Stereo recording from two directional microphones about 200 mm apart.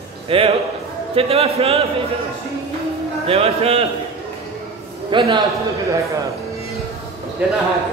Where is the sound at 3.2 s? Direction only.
30° right (ahead or behind).